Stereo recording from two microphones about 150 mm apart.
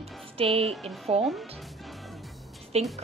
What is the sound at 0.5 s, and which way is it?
Speech, centre (ahead or behind).